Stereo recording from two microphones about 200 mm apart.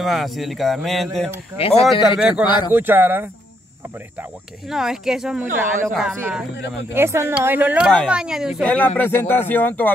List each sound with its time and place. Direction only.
0.0 s speech: centre (ahead or behind)
1.6 s speech: 25° left (ahead or behind)
2.1 s speech: 5° right (ahead or behind)
2.4 s speech: 25° left (ahead or behind)
2.7 s speech: 10° right (ahead or behind)
6.5 s speech: 60° left (ahead or behind)
6.9 s speech: 10° right (ahead or behind)
8.6 s speech: 10° left (ahead or behind)